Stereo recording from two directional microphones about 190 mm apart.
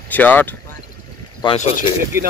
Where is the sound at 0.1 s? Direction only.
10° left (ahead or behind).